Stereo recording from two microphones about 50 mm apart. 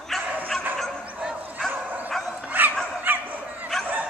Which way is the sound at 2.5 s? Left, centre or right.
Right.